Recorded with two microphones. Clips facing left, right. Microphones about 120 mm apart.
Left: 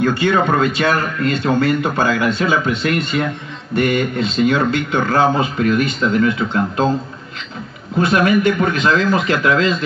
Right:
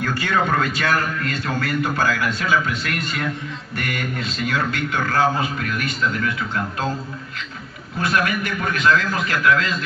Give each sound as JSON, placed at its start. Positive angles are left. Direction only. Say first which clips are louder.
{"t": 0.0, "sound": "a man's voice", "louder": "left 6 dB", "side_deg": 25}
{"t": 8.0, "sound": "a man's voice", "louder": "left 8 dB", "side_deg": 25}